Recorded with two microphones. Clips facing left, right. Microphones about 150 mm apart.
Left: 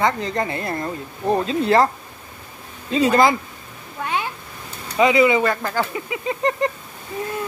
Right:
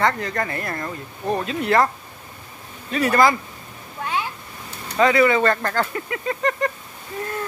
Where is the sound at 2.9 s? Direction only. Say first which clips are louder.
Left 2 dB; 20° left (ahead or behind).